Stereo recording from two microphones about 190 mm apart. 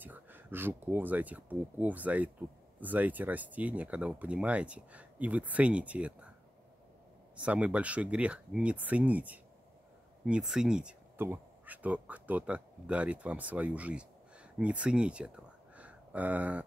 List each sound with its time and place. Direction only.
0.0 s speech: 10° right (ahead or behind)
7.3 s speech: 5° right (ahead or behind)